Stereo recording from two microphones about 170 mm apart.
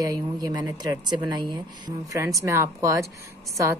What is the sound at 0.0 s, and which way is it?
Speech, 20° right (ahead or behind).